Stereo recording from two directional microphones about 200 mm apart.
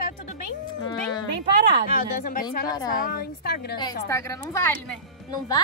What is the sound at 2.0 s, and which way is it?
Speech, 45° left (ahead or behind).